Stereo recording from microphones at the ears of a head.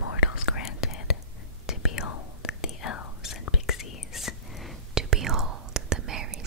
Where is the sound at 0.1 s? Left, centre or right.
Left.